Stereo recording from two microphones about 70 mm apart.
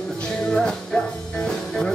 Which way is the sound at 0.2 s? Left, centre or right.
Centre.